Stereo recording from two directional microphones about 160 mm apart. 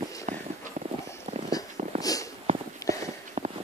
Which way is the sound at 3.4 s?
50° right (ahead or behind).